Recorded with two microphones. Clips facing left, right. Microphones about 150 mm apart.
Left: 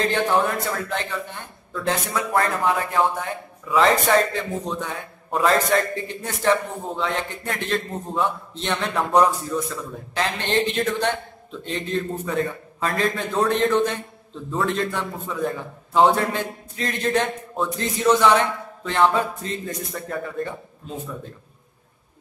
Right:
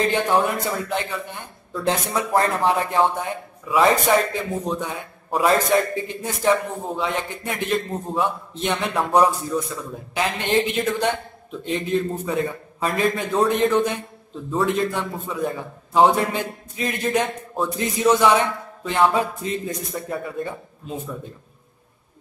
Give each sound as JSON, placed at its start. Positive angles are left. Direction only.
{"t": 0.0, "sound": "a man's voice", "side_deg": -15}
{"t": 1.7, "sound": "a man's voice", "side_deg": -25}
{"t": 3.7, "sound": "a man's voice", "side_deg": -15}